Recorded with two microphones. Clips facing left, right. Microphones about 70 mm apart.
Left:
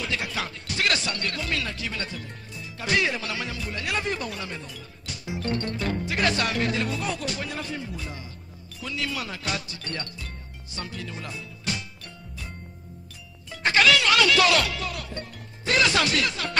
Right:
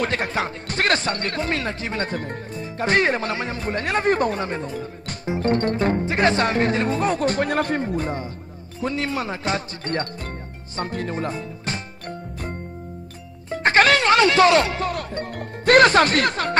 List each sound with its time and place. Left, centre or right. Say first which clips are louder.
0.0 s speech: right 7 dB; right
10.8 s music: right 10 dB; right
13.5 s speech: right 4 dB; right